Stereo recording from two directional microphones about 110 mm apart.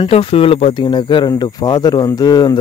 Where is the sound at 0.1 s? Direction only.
55° left (ahead or behind).